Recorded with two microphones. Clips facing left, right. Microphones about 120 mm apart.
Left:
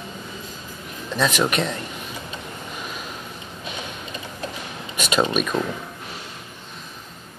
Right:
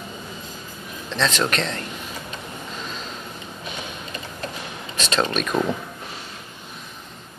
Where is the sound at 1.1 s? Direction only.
10° left (ahead or behind).